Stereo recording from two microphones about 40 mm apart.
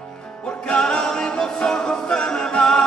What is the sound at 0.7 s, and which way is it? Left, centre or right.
A capella, centre.